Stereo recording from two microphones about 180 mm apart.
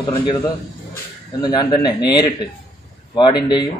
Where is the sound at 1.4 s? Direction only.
20° left (ahead or behind).